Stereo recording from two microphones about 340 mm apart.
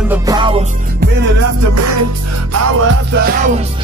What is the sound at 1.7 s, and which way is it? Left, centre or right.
Music, right.